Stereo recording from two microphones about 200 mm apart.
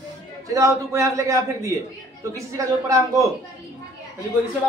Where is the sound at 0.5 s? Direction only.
15° right (ahead or behind).